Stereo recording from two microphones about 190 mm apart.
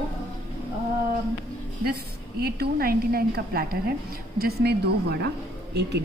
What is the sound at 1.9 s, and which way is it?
A woman's voice, 55° right (ahead or behind).